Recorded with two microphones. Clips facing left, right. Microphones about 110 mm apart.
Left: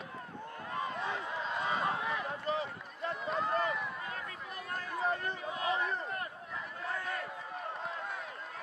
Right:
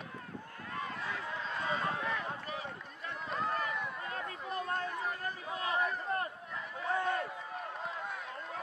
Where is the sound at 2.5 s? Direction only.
30° left (ahead or behind).